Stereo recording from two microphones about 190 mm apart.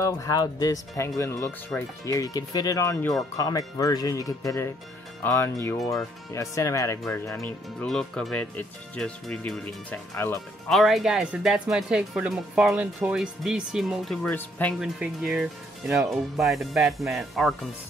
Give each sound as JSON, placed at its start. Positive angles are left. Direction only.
{"t": 0.0, "sound": "speech", "side_deg": 15}
{"t": 7.3, "sound": "speech", "side_deg": 5}
{"t": 10.7, "sound": "speech", "side_deg": 0}
{"t": 14.8, "sound": "speech", "side_deg": -5}